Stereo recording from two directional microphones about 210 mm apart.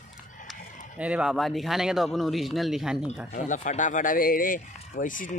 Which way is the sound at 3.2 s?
35° left (ahead or behind).